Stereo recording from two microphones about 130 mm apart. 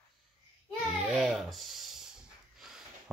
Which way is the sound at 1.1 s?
5° right (ahead or behind).